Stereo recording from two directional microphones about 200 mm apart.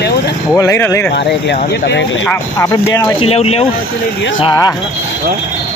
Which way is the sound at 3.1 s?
30° left (ahead or behind).